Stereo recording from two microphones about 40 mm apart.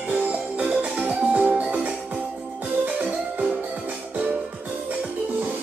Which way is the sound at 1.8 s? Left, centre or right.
Right.